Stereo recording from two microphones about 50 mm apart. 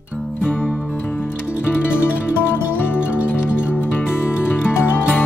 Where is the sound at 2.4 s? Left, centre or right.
Left.